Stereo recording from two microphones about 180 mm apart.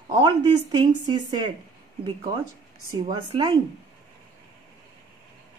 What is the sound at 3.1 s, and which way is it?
Speech, 25° right (ahead or behind).